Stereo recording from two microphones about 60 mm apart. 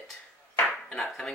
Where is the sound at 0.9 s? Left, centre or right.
Centre.